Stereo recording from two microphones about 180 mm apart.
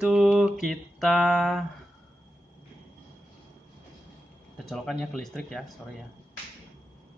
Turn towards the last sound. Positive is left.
turn(degrees=5)  # may be behind; listen again after turning